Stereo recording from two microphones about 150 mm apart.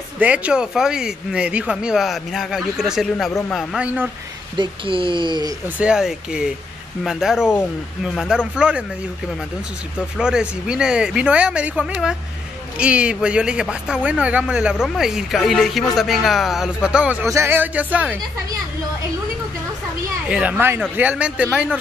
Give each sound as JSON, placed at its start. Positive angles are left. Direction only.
{"t": 0.2, "sound": "speech", "side_deg": -10}
{"t": 4.6, "sound": "speech", "side_deg": -35}
{"t": 5.8, "sound": "speech", "side_deg": -5}
{"t": 9.9, "sound": "speech", "side_deg": -5}
{"t": 20.2, "sound": "speech", "side_deg": -10}